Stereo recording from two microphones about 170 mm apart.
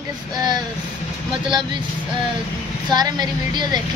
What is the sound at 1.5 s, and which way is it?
Speech, 25° right (ahead or behind).